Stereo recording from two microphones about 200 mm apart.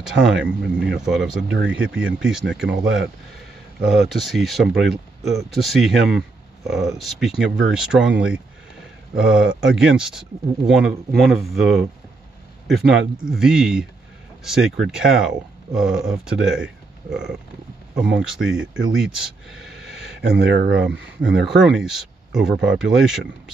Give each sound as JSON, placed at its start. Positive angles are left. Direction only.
{"t": 0.0, "sound": "speech", "side_deg": 0}
{"t": 1.5, "sound": "speech", "side_deg": -65}
{"t": 1.8, "sound": "speech", "side_deg": -5}
{"t": 20.2, "sound": "speech", "side_deg": -60}
{"t": 21.5, "sound": "speech", "side_deg": -5}